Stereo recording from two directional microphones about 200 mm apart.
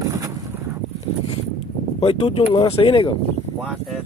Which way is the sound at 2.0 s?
30° left (ahead or behind).